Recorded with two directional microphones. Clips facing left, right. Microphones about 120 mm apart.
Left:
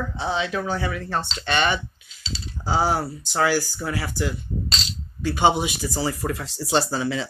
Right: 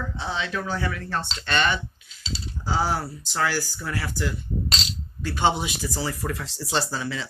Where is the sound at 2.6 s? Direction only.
30° left (ahead or behind).